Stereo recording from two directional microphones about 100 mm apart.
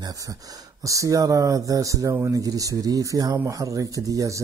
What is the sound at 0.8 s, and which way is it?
Speech, 35° right (ahead or behind).